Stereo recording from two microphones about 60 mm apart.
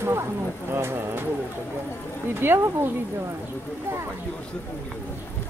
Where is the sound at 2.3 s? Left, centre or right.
Right.